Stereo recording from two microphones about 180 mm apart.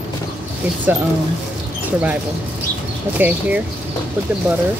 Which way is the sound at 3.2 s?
10° right (ahead or behind).